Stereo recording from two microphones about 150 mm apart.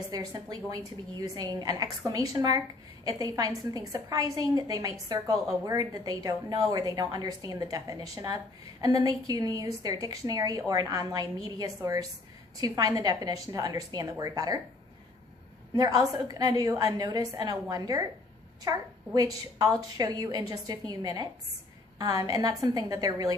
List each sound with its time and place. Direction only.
0.1 s a woman's voice: 25° right (ahead or behind)
15.7 s a woman's voice: 25° right (ahead or behind)